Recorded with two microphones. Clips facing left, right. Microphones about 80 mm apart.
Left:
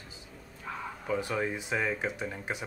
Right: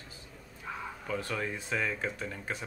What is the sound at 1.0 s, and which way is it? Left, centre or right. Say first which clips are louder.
Speech: left 4 dB; centre.